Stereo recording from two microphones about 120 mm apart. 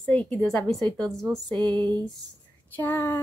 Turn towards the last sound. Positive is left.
turn(degrees=20)  # may be behind; listen again after turning